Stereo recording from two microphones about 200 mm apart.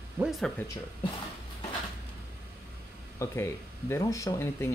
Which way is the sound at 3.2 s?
15° left (ahead or behind).